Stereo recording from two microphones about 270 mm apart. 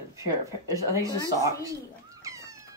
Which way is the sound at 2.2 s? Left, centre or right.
Centre.